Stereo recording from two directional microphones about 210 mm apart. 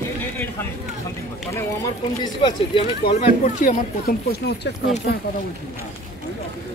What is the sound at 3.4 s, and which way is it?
Speech, 35° left (ahead or behind).